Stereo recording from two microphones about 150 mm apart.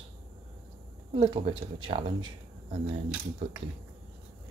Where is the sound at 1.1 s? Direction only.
35° right (ahead or behind).